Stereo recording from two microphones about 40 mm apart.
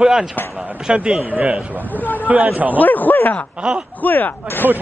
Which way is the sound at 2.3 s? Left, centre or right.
Right.